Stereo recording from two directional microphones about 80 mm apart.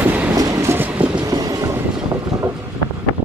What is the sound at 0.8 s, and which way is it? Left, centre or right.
Vehicle, centre.